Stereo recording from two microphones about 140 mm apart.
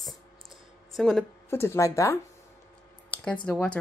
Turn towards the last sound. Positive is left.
turn(degrees=10)  # may be behind; listen again after turning